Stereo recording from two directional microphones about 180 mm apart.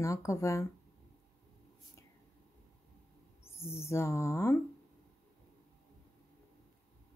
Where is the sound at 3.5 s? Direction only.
15° left (ahead or behind).